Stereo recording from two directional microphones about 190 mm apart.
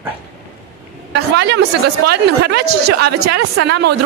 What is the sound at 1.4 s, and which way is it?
Speech, 60° right (ahead or behind).